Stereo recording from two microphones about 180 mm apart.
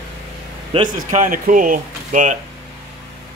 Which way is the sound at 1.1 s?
50° right (ahead or behind).